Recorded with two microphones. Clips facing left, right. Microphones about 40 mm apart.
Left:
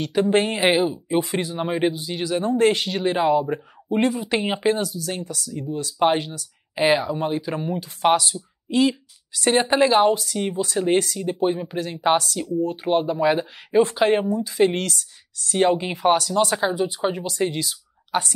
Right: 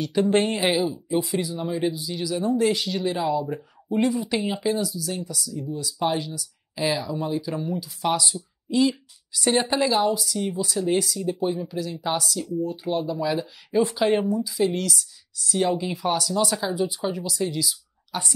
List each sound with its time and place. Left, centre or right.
0.0 s speech: left
14.3 s speech: left